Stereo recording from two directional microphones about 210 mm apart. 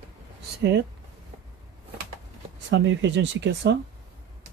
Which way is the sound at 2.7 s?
60° right (ahead or behind).